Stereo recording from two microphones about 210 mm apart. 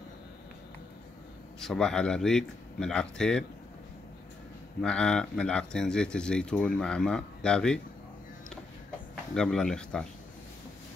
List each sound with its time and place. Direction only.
1.6 s speech: centre (ahead or behind)
4.8 s speech: 5° left (ahead or behind)
9.3 s speech: 5° left (ahead or behind)